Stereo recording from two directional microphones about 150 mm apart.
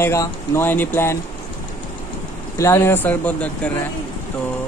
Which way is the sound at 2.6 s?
15° left (ahead or behind).